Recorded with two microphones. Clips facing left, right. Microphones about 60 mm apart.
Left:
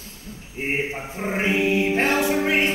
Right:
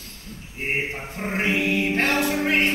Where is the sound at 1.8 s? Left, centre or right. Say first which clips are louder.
Left 2 dB; left.